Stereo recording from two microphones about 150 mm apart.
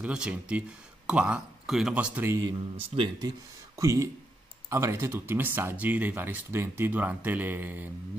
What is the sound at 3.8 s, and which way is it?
Speech, 20° right (ahead or behind).